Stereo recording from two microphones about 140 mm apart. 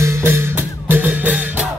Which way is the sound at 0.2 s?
15° right (ahead or behind).